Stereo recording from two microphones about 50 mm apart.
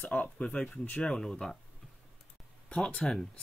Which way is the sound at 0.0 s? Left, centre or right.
Left.